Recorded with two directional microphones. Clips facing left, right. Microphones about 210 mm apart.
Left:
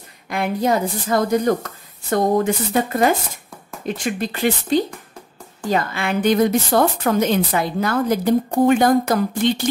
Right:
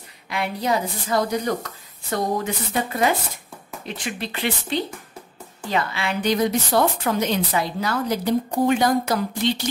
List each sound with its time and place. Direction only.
0.3 s a woman's voice: 50° left (ahead or behind)